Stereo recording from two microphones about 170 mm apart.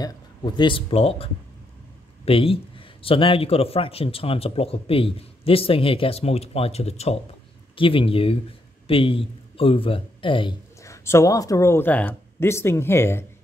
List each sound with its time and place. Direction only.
0.0 s a man's voice: 25° left (ahead or behind)
10.8 s speech: 15° left (ahead or behind)